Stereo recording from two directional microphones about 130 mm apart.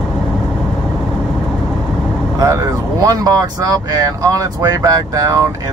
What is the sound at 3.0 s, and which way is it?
Speech, 25° right (ahead or behind).